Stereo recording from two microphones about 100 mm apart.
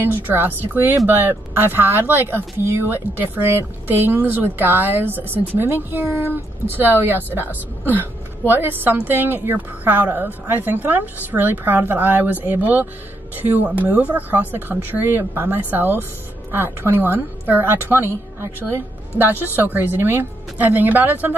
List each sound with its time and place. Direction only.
0.0 s speech: 20° right (ahead or behind)